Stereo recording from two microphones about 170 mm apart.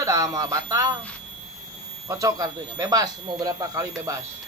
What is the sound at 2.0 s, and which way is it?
Speech, 20° right (ahead or behind).